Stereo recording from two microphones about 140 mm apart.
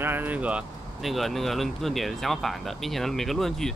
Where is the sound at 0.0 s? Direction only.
15° right (ahead or behind).